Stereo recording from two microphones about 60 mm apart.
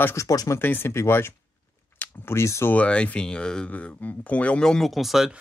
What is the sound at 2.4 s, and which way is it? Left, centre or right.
Speech, left.